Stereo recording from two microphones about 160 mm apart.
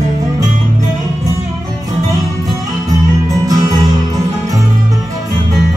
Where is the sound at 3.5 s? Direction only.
20° right (ahead or behind).